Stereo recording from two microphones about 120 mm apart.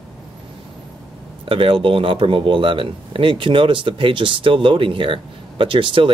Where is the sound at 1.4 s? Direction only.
45° right (ahead or behind).